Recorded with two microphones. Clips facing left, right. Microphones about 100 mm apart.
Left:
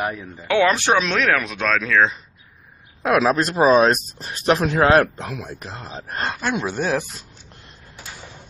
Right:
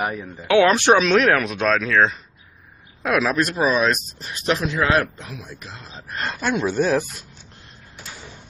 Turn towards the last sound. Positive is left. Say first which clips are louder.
# right 2 dB
turn(degrees=10)  # may be behind; listen again after turning